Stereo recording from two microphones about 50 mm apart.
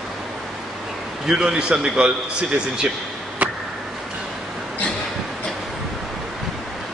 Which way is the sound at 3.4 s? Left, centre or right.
Right.